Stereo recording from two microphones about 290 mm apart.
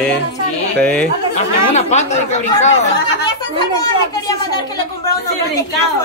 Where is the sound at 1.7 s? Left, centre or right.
Left.